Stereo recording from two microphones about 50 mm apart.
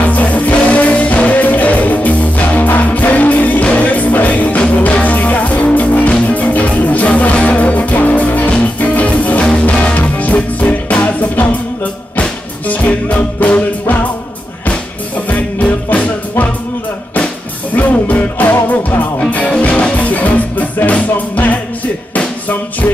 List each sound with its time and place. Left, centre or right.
0.1 s music: left
15.2 s music: left
17.7 s music: left